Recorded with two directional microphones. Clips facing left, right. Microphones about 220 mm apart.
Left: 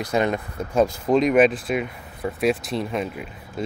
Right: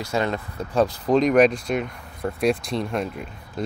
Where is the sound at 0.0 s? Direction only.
15° left (ahead or behind).